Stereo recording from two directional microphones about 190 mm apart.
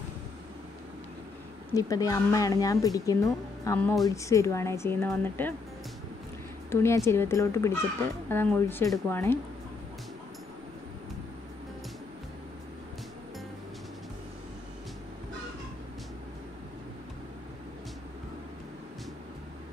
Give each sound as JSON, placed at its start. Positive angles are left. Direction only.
{"t": 1.8, "sound": "speech", "side_deg": 20}
{"t": 6.7, "sound": "a woman's voice", "side_deg": 15}